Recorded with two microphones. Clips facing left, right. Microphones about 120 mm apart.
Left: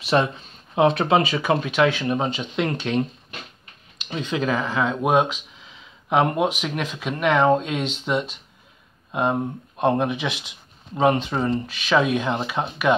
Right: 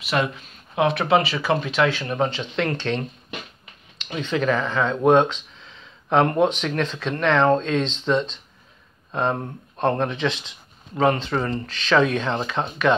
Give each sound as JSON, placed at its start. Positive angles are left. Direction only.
{"t": 0.0, "sound": "speech", "side_deg": 30}